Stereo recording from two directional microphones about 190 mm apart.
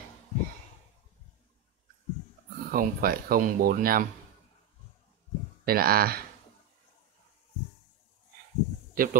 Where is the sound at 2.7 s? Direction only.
50° right (ahead or behind).